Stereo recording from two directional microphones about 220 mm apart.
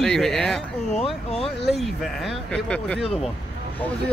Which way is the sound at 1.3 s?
25° left (ahead or behind).